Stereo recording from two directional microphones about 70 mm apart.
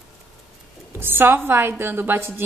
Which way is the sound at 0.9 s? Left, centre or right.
Right.